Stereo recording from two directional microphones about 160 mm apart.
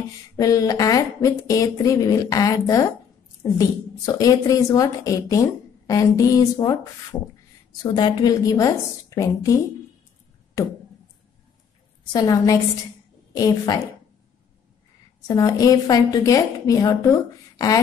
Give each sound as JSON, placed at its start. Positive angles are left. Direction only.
{"t": 0.4, "sound": "a woman's voice", "side_deg": 20}
{"t": 10.6, "sound": "a sound", "side_deg": 20}
{"t": 12.1, "sound": "a woman's voice", "side_deg": 25}
{"t": 15.2, "sound": "a woman's voice", "side_deg": 20}